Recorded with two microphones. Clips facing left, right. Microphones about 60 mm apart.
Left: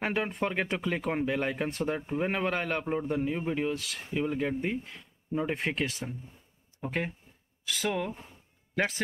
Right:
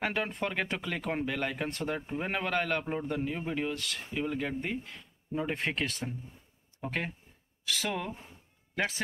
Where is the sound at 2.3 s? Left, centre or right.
Centre.